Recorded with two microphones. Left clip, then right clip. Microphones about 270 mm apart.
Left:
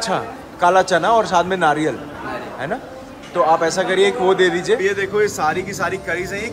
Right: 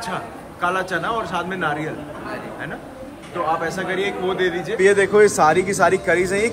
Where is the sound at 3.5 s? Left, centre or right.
Centre.